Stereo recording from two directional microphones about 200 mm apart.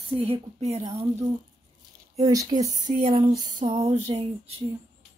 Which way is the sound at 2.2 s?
15° right (ahead or behind).